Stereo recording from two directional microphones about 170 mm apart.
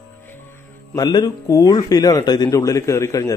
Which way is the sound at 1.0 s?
25° left (ahead or behind).